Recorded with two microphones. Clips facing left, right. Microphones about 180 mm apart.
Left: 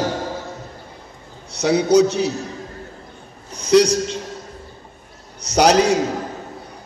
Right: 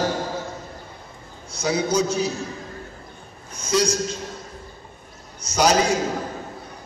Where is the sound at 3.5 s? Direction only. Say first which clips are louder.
Left 8 dB; 70° left (ahead or behind).